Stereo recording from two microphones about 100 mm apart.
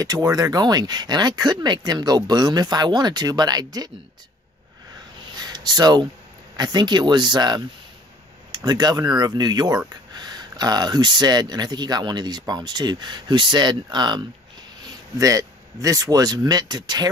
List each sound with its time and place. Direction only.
0.0 s speech: 40° right (ahead or behind)
5.3 s a sound: 45° right (ahead or behind)
6.5 s speech: 45° right (ahead or behind)